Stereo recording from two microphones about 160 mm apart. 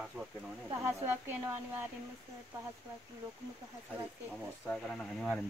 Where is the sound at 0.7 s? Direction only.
15° right (ahead or behind).